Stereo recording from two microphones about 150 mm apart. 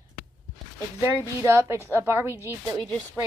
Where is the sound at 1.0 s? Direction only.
15° right (ahead or behind).